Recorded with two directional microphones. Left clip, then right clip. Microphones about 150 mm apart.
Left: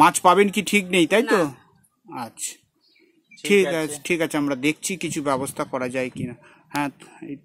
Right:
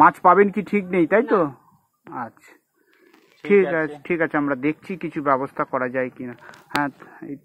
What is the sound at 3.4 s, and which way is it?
Speech, 35° left (ahead or behind).